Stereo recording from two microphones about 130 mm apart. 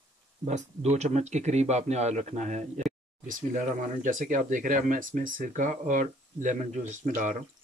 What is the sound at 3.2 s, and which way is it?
Speech, 90° right.